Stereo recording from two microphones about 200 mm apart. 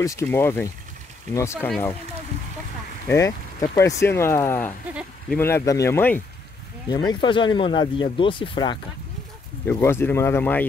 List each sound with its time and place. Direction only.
0.0 s speech: 15° left (ahead or behind)
3.1 s speech: 15° left (ahead or behind)
6.9 s speech: 20° left (ahead or behind)
9.7 s speech: 10° left (ahead or behind)